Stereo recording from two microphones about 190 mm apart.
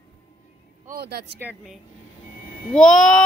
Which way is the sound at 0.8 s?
55° right (ahead or behind).